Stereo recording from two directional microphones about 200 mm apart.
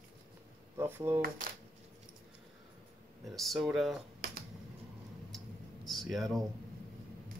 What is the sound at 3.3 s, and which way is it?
Speech, centre (ahead or behind).